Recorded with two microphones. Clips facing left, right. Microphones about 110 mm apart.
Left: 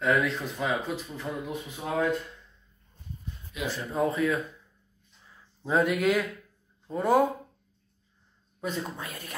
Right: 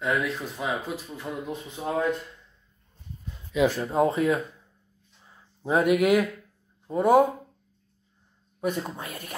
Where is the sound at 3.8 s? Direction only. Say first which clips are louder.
Right 4 dB; 30° right (ahead or behind).